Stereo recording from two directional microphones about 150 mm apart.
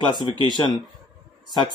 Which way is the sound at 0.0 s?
30° left (ahead or behind).